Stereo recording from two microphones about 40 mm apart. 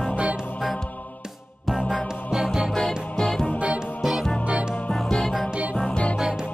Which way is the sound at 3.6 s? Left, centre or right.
Right.